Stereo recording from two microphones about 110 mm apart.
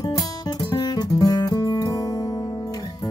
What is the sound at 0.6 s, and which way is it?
Music, 35° left (ahead or behind).